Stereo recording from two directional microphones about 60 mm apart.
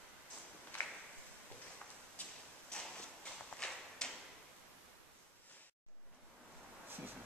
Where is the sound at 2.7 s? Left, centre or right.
Centre.